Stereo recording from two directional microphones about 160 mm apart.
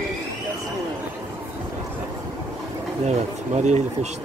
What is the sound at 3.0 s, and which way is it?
Speech, 45° right (ahead or behind).